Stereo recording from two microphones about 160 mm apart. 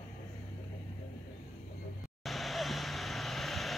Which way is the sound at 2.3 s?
Centre (ahead or behind).